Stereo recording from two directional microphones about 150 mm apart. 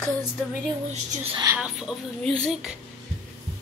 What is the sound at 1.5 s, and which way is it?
Speech, 5° right (ahead or behind).